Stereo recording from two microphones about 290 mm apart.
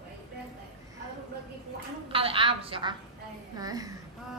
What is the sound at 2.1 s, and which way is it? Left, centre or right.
Speech, centre.